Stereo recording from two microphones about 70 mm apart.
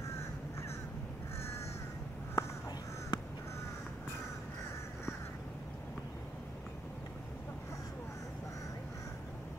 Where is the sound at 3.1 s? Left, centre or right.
Left.